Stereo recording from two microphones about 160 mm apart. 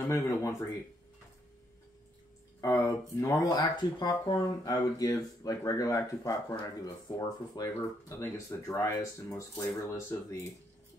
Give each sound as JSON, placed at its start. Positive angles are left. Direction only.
{"t": 0.1, "sound": "speech", "side_deg": 20}
{"t": 2.6, "sound": "speech", "side_deg": 20}